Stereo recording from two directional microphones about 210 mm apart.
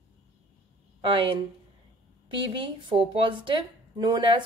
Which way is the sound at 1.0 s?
25° right (ahead or behind).